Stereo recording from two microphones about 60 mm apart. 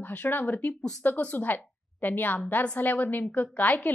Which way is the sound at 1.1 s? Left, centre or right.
Left.